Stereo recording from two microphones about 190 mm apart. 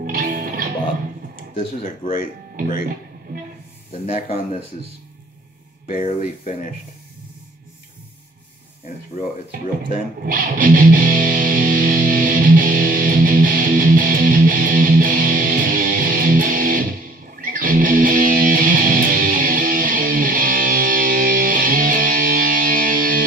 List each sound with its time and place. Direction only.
0.0 s music: 50° right (ahead or behind)
1.8 s speech: 40° left (ahead or behind)
4.0 s speech: 35° left (ahead or behind)
5.9 s speech: 40° left (ahead or behind)
10.2 s music: 45° right (ahead or behind)